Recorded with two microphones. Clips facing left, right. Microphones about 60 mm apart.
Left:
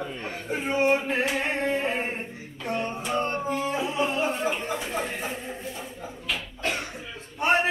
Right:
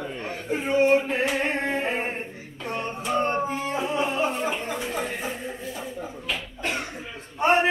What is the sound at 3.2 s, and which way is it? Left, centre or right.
Howl, right.